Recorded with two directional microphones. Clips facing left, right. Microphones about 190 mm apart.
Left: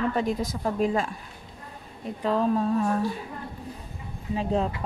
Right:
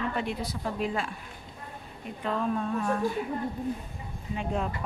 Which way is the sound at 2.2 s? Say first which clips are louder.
Left 6 dB; 35° left (ahead or behind).